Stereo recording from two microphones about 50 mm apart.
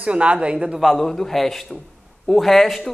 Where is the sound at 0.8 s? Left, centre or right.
Centre.